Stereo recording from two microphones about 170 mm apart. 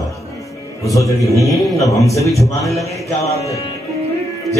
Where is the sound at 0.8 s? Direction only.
20° left (ahead or behind).